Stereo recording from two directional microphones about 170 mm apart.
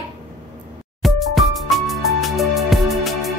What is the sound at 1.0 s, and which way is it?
Music, centre (ahead or behind).